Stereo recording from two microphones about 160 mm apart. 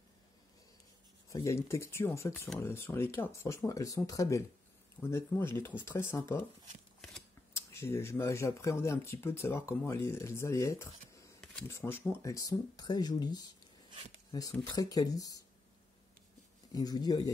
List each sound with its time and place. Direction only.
1.3 s speech: 20° left (ahead or behind)
7.5 s speech: 15° left (ahead or behind)
14.6 s speech: 25° left (ahead or behind)
16.7 s speech: 25° left (ahead or behind)